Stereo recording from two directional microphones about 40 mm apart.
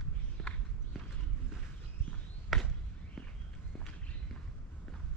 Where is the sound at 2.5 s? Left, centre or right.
Centre.